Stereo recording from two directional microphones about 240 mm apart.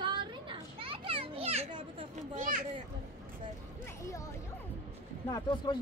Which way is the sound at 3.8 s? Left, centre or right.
Centre.